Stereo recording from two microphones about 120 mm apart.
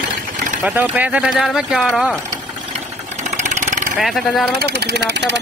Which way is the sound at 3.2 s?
90° right.